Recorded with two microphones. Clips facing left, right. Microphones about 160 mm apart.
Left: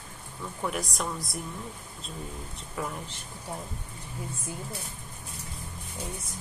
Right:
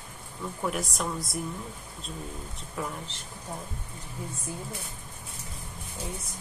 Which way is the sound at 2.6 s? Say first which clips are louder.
Left 1 dB; centre (ahead or behind).